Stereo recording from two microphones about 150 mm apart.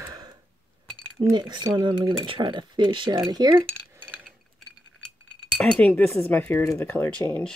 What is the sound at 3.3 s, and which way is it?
Cutlery, 25° right (ahead or behind).